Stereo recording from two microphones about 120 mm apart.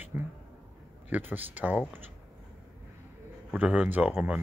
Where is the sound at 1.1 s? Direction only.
15° right (ahead or behind).